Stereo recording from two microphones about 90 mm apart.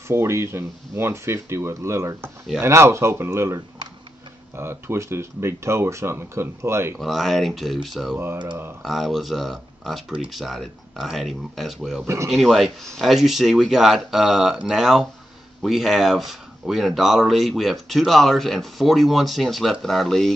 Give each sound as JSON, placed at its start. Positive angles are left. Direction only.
{"t": 0.1, "sound": "speech", "side_deg": -30}
{"t": 7.0, "sound": "speech", "side_deg": 0}